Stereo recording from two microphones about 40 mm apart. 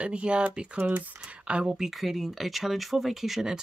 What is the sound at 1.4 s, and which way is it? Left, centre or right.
Speech, right.